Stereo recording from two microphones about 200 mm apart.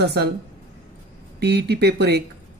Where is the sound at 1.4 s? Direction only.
55° right (ahead or behind).